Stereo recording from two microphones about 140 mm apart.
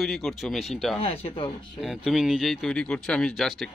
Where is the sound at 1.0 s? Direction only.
45° left (ahead or behind).